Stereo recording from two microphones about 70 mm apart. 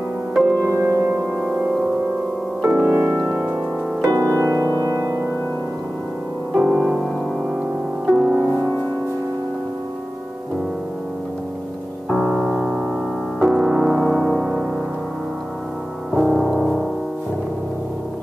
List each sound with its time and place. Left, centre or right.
0.7 s music: right
2.6 s music: centre
4.2 s music: right
6.5 s music: centre
8.1 s music: centre
12.1 s music: centre
16.1 s music: centre